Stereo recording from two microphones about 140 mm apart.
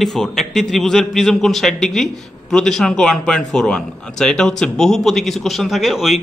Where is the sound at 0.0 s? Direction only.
5° left (ahead or behind).